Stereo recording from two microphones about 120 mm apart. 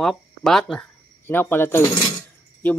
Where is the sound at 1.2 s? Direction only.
20° left (ahead or behind).